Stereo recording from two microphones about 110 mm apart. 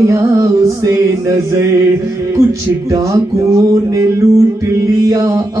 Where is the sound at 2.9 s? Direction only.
30° right (ahead or behind).